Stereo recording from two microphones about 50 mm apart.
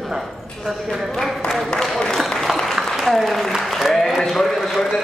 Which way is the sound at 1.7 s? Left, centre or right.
Centre.